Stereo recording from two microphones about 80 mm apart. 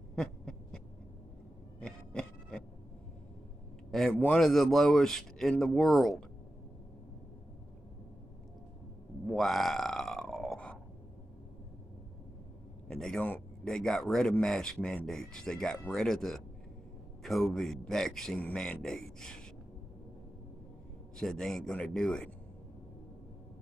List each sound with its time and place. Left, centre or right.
0.1 s owl: centre
1.8 s a sound: centre
4.1 s a man's voice: centre
4.4 s speech: centre
9.3 s burping: centre
12.8 s a man's voice: centre
21.2 s speech: centre